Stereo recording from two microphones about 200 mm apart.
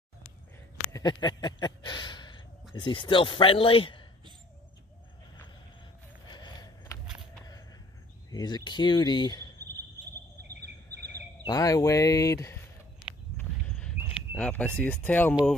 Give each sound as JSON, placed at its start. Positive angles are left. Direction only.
{"t": 0.9, "sound": "a man's voice", "side_deg": 20}
{"t": 6.2, "sound": "a sound", "side_deg": 20}
{"t": 8.3, "sound": "a man's voice", "side_deg": 20}
{"t": 10.5, "sound": "bird vocalization", "side_deg": -55}
{"t": 11.4, "sound": "speech", "side_deg": 20}
{"t": 13.4, "sound": "horse", "side_deg": 5}
{"t": 13.9, "sound": "a sound", "side_deg": -10}
{"t": 14.3, "sound": "speech", "side_deg": 5}